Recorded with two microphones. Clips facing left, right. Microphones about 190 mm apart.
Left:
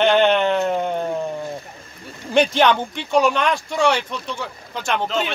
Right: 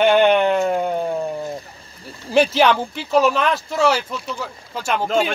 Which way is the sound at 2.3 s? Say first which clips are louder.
Right 1 dB; 5° right (ahead or behind).